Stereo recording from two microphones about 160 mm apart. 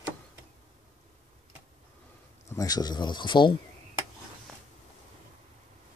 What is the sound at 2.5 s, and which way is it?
Speech, 25° left (ahead or behind).